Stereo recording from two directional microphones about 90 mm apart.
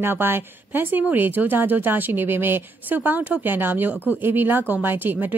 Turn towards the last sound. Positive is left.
turn(degrees=-20)  # may be behind; listen again after turning